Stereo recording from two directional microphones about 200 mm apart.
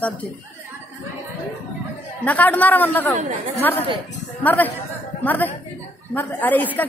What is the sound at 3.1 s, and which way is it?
Speech, 35° right (ahead or behind).